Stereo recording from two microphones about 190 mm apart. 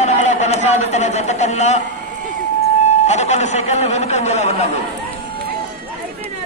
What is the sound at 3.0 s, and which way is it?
Speech, 35° left (ahead or behind).